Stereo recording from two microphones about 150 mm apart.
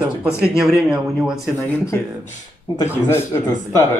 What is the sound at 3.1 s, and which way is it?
Speech, 20° left (ahead or behind).